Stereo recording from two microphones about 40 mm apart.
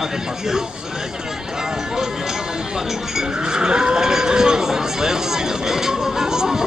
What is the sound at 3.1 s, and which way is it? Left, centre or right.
Speech, centre.